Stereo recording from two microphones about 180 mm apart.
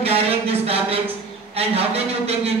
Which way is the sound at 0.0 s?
35° right (ahead or behind).